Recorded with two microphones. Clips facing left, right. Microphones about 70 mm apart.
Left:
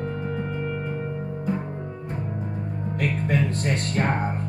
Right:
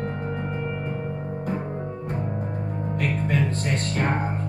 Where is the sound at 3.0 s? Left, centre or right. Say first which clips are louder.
Left 1 dB; centre.